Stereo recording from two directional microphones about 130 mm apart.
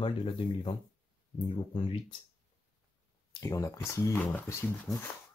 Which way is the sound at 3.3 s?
25° left (ahead or behind).